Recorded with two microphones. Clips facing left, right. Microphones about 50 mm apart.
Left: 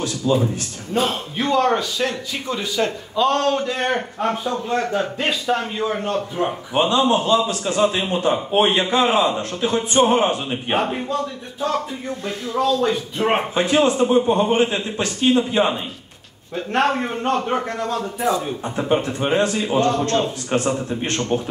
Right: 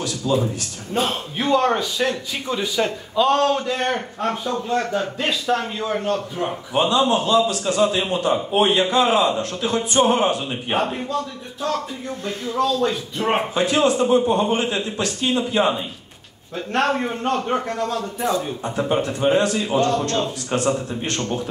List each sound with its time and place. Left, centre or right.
0.2 s a man's voice: left
2.0 s a man's voice: centre
6.9 s a man's voice: left
10.7 s a man's voice: centre
12.5 s a man's voice: centre
13.6 s a man's voice: left
16.5 s a man's voice: centre
18.8 s a man's voice: left